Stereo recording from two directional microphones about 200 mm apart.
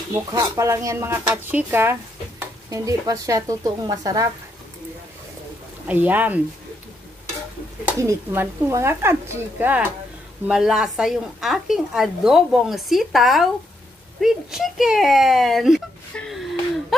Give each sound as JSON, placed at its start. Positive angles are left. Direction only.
{"t": 0.1, "sound": "speech", "side_deg": -15}
{"t": 5.9, "sound": "speech", "side_deg": -10}
{"t": 8.0, "sound": "speech", "side_deg": -15}